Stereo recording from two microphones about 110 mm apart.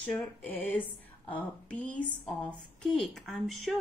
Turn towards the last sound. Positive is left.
turn(degrees=0)  # may be behind; listen again after turning